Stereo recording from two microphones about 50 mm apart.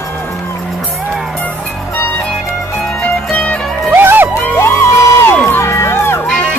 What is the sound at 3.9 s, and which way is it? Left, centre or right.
Music, right.